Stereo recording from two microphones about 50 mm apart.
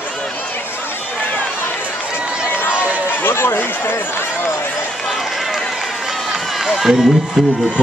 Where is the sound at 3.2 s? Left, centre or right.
Left.